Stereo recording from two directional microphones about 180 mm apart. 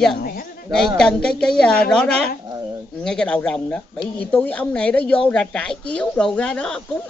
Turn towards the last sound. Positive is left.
turn(degrees=5)  # may be behind; listen again after turning